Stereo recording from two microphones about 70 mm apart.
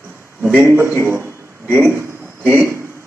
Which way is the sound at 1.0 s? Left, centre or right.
Right.